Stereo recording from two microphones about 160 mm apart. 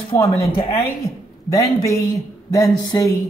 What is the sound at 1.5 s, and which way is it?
Speech, 20° left (ahead or behind).